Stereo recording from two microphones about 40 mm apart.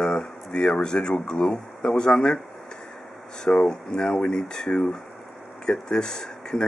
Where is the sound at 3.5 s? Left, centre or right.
Left.